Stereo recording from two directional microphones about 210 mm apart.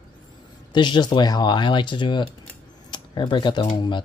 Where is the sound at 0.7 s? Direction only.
20° left (ahead or behind).